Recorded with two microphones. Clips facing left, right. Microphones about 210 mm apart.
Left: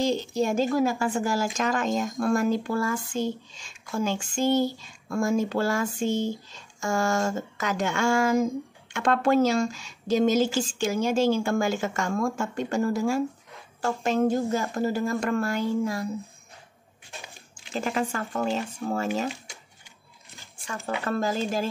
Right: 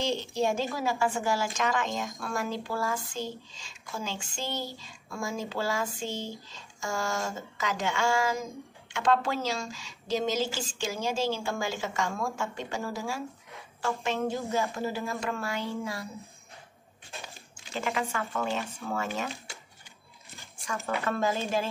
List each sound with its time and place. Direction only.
0.0 s a woman's voice: 40° left (ahead or behind)
17.7 s a woman's voice: 40° left (ahead or behind)
18.8 s speech: 35° left (ahead or behind)
20.6 s speech: 30° left (ahead or behind)